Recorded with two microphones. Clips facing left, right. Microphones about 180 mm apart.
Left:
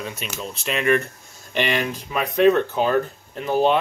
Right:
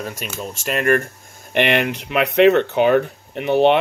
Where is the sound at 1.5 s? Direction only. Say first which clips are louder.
Right 5 dB; 65° right (ahead or behind).